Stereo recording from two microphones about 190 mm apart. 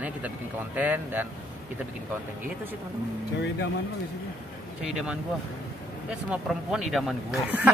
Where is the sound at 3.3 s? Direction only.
65° left (ahead or behind).